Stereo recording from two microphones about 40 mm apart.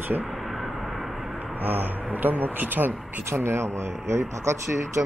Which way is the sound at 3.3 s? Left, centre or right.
Right.